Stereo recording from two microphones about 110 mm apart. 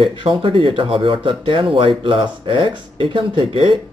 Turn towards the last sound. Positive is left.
turn(degrees=-50)  # may be behind; listen again after turning